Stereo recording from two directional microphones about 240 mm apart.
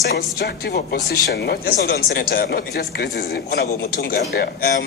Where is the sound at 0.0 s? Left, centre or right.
Left.